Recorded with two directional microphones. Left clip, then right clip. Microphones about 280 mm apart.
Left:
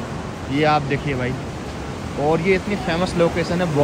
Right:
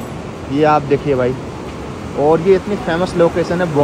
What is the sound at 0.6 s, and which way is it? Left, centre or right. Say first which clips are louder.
Speech: right 6 dB; centre.